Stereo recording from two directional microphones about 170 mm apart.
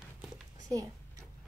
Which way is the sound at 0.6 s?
20° right (ahead or behind).